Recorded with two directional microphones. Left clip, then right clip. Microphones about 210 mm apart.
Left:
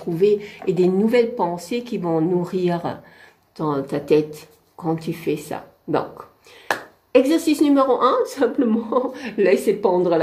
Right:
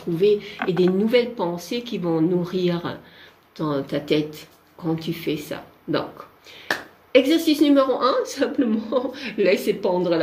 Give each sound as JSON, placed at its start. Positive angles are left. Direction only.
{"t": 0.1, "sound": "speech", "side_deg": 20}
{"t": 7.1, "sound": "speech", "side_deg": 10}